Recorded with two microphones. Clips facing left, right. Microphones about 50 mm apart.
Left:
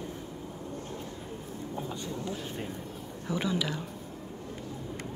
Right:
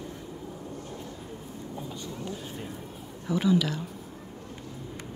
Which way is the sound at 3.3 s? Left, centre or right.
Centre.